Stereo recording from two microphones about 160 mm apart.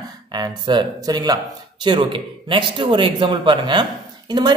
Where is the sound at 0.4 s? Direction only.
25° right (ahead or behind).